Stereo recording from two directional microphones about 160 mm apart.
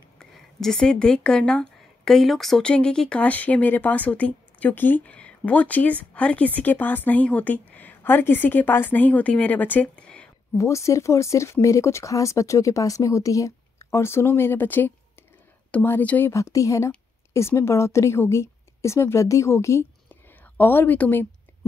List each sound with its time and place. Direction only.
0.2 s a woman's voice: 5° left (ahead or behind)
10.6 s a woman's voice: 20° left (ahead or behind)